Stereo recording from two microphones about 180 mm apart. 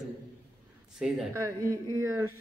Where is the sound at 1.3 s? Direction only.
15° right (ahead or behind).